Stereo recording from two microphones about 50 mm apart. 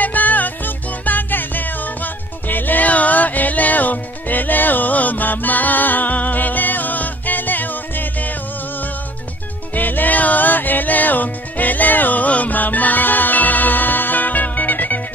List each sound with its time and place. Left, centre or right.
0.0 s music: left
9.8 s music: left